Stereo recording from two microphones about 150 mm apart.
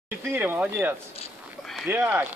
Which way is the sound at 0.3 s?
10° right (ahead or behind).